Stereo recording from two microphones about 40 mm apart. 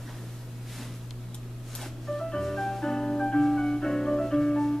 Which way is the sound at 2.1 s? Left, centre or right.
Centre.